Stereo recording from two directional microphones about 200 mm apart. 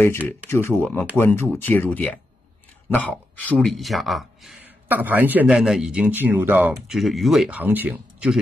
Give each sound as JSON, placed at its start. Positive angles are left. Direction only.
{"t": 0.5, "sound": "speech", "side_deg": 10}